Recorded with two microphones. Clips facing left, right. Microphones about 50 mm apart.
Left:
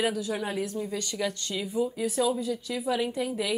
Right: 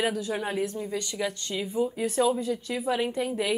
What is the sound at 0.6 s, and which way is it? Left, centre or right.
Speech, right.